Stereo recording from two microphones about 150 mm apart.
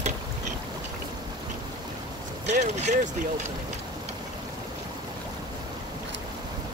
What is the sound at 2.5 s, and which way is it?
Speech, 50° right (ahead or behind).